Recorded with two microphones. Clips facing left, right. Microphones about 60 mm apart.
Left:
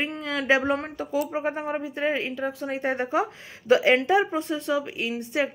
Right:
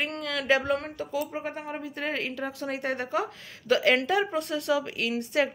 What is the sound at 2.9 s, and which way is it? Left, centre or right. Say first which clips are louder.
A woman's voice: left 6 dB; left.